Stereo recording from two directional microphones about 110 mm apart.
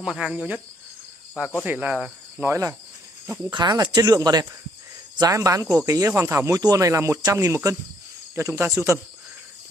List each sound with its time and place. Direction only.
0.0 s cricket: 5° right (ahead or behind)
1.6 s cricket: 10° right (ahead or behind)
2.4 s speech: 25° right (ahead or behind)
3.5 s speech: 40° right (ahead or behind); by 9.0 s 20° right (ahead or behind)